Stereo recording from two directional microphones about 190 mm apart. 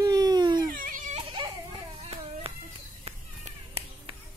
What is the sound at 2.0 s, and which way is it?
Clapping, 30° right (ahead or behind).